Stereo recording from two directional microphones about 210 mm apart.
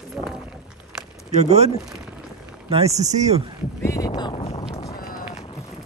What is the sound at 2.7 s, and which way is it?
Speech, 30° right (ahead or behind).